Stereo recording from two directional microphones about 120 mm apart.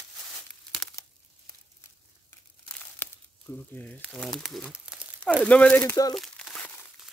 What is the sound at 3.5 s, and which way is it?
Speech, 30° left (ahead or behind).